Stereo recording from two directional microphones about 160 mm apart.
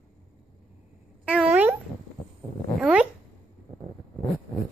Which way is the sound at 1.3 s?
5° right (ahead or behind).